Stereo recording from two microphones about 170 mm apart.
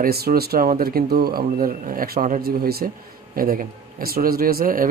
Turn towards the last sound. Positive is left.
turn(degrees=-55)  # may be behind; listen again after turning